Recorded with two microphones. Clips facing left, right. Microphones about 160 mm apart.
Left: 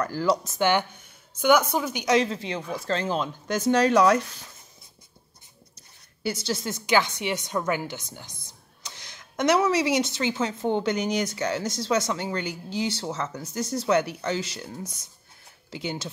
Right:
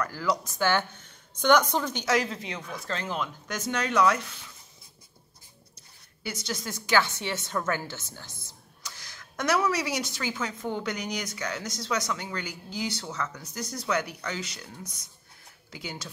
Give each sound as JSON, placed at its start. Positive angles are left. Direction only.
{"t": 0.0, "sound": "a woman's voice", "side_deg": 30}
{"t": 2.1, "sound": "speech", "side_deg": 30}
{"t": 6.2, "sound": "a woman's voice", "side_deg": 30}